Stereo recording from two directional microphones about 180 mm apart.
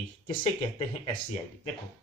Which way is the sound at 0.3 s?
30° left (ahead or behind).